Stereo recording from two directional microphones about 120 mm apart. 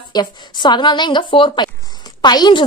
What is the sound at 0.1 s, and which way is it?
A woman's voice, 35° left (ahead or behind).